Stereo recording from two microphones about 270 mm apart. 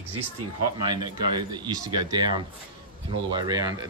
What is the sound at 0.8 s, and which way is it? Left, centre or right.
Speech, centre.